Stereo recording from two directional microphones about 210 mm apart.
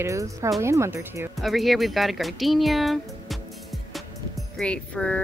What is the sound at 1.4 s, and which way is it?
Speech, centre (ahead or behind).